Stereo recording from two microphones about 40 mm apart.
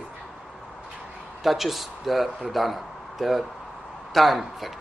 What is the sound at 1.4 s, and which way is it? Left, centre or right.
Speech, centre.